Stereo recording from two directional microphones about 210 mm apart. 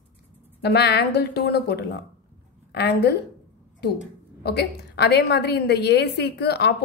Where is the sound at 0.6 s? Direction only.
50° left (ahead or behind).